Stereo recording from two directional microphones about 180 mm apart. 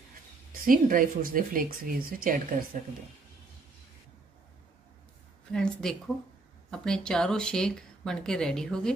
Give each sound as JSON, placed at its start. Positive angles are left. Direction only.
{"t": 0.5, "sound": "speech", "side_deg": -50}
{"t": 5.5, "sound": "speech", "side_deg": 5}